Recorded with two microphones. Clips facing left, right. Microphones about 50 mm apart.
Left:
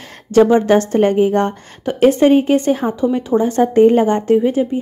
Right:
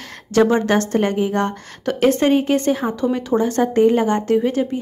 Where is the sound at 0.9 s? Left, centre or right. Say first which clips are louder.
Left 5 dB; left.